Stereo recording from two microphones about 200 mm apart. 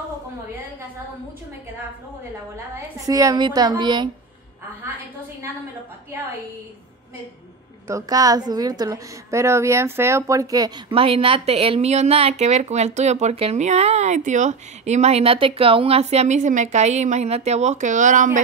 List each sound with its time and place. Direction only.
3.1 s a woman's voice: 15° right (ahead or behind)
7.8 s a woman's voice: 20° right (ahead or behind); by 18.4 s 40° right (ahead or behind)